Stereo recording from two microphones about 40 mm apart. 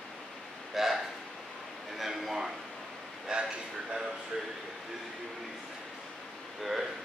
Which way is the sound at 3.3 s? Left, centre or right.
Right.